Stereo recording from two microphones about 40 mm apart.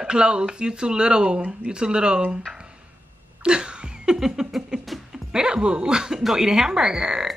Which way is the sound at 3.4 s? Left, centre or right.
Right.